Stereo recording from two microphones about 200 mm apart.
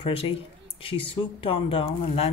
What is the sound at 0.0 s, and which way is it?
Speech, 30° left (ahead or behind).